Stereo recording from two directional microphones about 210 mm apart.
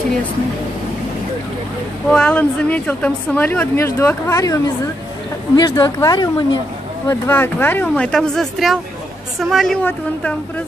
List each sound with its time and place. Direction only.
2.0 s a woman's voice: 5° left (ahead or behind)